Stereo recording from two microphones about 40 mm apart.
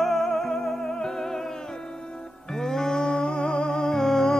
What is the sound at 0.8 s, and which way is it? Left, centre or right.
Music, centre.